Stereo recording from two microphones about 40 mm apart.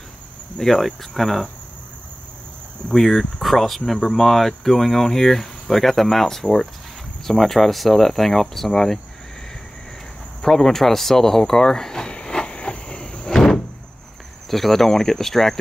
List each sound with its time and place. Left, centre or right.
0.6 s speech: centre
2.9 s speech: centre
7.2 s speech: centre
10.4 s a sound: centre; by 13.3 s left
13.3 s door: centre
14.5 s speech: centre